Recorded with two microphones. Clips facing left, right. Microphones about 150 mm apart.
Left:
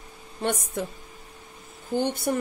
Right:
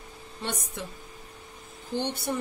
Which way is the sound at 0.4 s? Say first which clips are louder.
Left 7 dB; 50° left (ahead or behind).